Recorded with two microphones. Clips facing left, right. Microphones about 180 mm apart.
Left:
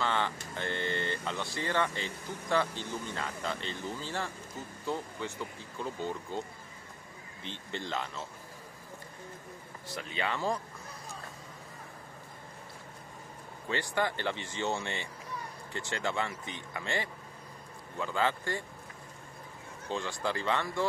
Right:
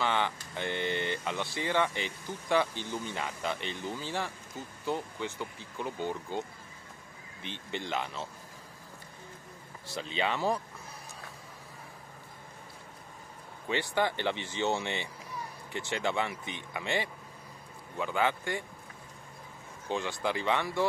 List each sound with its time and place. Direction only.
0.0 s speech: 15° right (ahead or behind)
7.4 s speech: 20° right (ahead or behind)
10.0 s speech: 20° right (ahead or behind)
13.7 s speech: 20° right (ahead or behind)
19.9 s speech: 15° right (ahead or behind)